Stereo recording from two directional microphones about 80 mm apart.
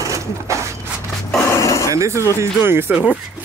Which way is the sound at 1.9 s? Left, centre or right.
Right.